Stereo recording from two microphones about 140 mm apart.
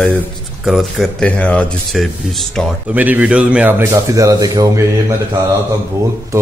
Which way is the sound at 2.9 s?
10° right (ahead or behind).